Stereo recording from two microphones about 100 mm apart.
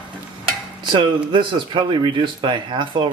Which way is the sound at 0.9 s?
50° right (ahead or behind).